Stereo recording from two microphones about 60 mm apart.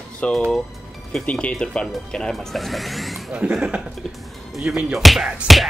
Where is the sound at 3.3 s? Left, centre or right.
Centre.